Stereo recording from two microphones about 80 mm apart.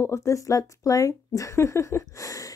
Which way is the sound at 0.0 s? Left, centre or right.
Left.